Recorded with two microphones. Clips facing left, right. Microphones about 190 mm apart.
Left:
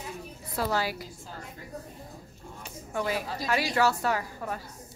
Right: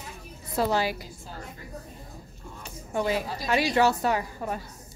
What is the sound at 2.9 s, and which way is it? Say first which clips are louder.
A woman's voice: right 3 dB; 25° right (ahead or behind).